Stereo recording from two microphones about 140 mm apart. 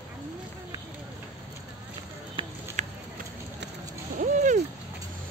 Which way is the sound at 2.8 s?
60° right (ahead or behind).